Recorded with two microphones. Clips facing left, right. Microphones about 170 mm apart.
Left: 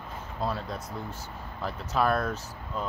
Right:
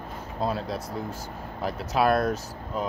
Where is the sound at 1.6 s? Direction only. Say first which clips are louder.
Right 4 dB; 10° right (ahead or behind).